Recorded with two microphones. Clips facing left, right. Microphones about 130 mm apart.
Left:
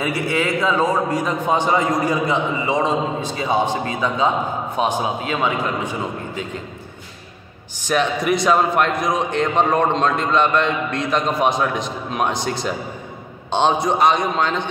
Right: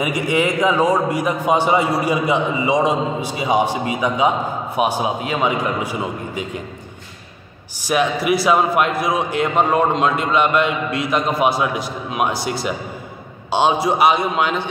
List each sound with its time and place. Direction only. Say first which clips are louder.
0.0 s a man's voice: right 2 dB; 15° right (ahead or behind)
7.9 s a man's voice: right 1 dB; 5° right (ahead or behind)